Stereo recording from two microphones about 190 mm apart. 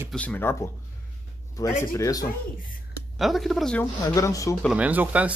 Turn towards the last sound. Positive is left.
turn(degrees=-10)  # may be behind; listen again after turning